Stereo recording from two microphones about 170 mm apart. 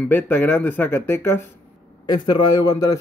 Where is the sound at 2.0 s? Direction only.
25° left (ahead or behind).